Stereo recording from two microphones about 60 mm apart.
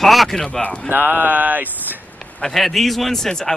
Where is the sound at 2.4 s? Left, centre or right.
Centre.